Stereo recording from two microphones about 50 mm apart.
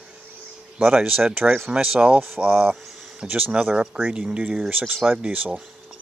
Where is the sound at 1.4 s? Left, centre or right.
Right.